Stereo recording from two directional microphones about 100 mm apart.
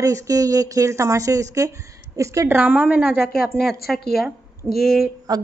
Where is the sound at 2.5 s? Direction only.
15° right (ahead or behind).